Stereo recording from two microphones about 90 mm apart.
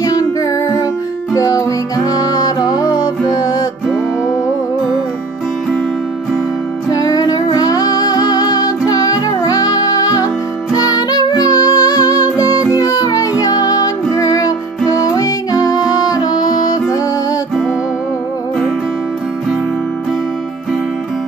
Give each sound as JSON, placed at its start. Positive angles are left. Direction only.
{"t": 0.0, "sound": "music", "side_deg": 40}
{"t": 6.9, "sound": "music", "side_deg": 45}